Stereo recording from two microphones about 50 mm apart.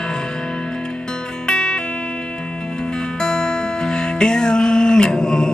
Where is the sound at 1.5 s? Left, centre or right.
Centre.